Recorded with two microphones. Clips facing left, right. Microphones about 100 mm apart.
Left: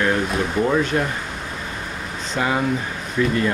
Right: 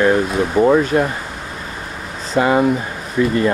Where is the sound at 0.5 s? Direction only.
30° right (ahead or behind).